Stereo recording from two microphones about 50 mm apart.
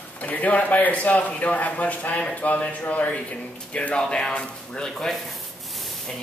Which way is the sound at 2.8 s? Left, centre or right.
Left.